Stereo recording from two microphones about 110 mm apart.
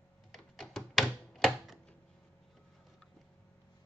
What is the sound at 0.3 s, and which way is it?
Door, centre (ahead or behind).